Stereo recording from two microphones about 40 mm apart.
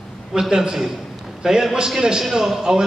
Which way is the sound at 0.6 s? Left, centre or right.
Centre.